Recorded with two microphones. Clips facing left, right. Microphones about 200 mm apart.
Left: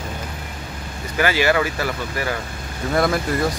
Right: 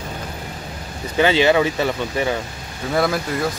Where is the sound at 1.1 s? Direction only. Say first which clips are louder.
Right 3 dB; 25° right (ahead or behind).